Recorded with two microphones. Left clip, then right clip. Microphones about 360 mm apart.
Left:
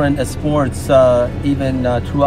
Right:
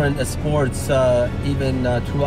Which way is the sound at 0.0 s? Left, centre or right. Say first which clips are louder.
Left 5 dB; centre.